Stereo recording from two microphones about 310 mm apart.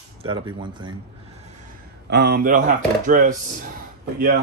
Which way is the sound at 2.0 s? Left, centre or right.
Right.